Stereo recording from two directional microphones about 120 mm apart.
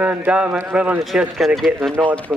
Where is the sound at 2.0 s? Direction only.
10° left (ahead or behind).